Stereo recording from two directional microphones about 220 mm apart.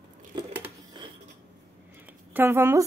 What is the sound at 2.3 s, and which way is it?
Speech, 10° right (ahead or behind).